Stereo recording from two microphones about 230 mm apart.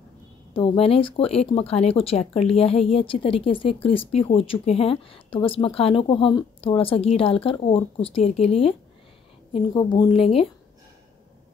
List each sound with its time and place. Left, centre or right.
0.5 s speech: left